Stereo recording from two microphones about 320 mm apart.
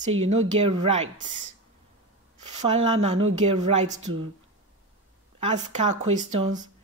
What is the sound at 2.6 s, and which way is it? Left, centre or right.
Speech, centre.